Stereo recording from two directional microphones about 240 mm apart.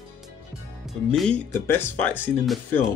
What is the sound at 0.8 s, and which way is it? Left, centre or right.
Speech, centre.